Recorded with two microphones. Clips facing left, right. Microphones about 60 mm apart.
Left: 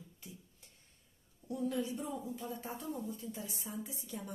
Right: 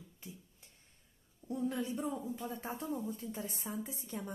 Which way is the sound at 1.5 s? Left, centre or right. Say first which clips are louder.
Even; right.